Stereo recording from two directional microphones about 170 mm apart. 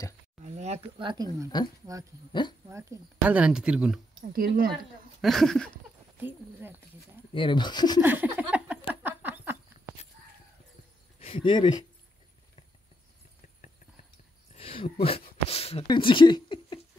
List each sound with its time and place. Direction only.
0.6 s speech: 35° right (ahead or behind)
1.5 s speech: 25° left (ahead or behind)
2.7 s speech: 10° right (ahead or behind)
4.2 s speech: 55° right (ahead or behind)
5.2 s a sound: centre (ahead or behind)
7.3 s speech: 30° left (ahead or behind)
8.0 s a sound: 10° right (ahead or behind)
11.1 s speech: 30° left (ahead or behind)
14.5 s a sound: 35° left (ahead or behind)